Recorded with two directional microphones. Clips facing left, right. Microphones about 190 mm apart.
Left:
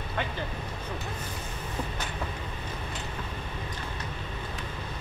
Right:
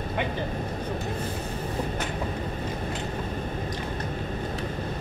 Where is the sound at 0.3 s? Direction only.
45° right (ahead or behind).